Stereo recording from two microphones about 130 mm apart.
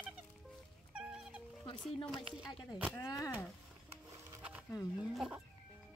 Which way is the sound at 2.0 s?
5° right (ahead or behind).